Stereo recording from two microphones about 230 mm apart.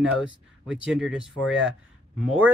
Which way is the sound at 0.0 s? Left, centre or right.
Centre.